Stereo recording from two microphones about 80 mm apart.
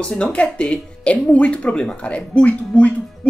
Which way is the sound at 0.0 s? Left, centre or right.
Centre.